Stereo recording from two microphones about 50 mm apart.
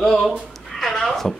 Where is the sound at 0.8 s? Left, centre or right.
Centre.